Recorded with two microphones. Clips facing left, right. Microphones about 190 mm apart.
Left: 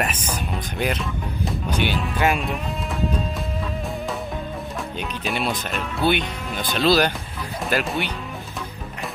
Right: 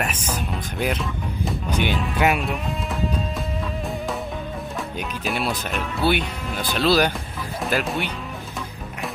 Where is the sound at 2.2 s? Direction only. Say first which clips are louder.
Right 1 dB; 5° right (ahead or behind).